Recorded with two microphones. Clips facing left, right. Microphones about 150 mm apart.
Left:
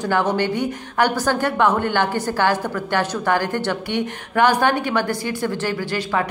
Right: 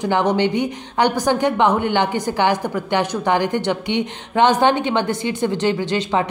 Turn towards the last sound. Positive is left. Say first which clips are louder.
# right 3 dB
turn(degrees=-20)  # may be behind; listen again after turning